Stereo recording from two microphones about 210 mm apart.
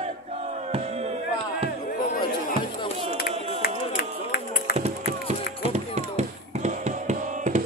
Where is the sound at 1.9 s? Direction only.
45° left (ahead or behind).